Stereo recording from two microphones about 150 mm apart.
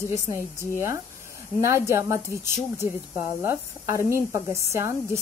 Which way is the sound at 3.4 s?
20° right (ahead or behind).